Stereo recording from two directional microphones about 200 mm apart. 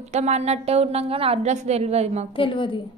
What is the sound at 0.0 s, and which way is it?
A woman's voice, 35° right (ahead or behind).